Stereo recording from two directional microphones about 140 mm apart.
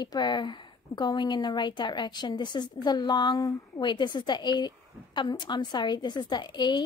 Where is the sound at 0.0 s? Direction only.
30° left (ahead or behind).